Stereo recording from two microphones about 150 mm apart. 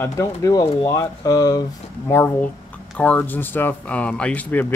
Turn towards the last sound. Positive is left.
turn(degrees=10)  # may be behind; listen again after turning